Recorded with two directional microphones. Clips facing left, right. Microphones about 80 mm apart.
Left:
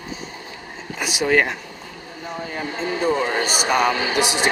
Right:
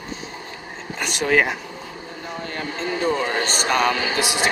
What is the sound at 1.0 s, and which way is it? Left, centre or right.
A man's voice, centre.